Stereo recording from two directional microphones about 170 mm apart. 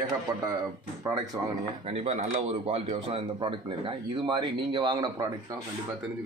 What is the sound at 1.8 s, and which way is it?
Speech, 35° right (ahead or behind).